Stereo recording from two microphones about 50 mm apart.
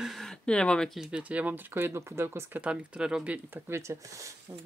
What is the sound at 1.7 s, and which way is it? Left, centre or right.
Speech, right.